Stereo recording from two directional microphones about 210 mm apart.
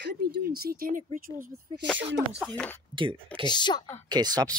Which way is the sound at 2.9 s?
25° right (ahead or behind).